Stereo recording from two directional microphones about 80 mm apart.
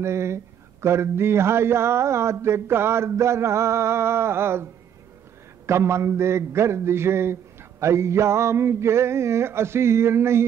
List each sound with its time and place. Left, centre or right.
0.0 s speech: right
5.7 s speech: right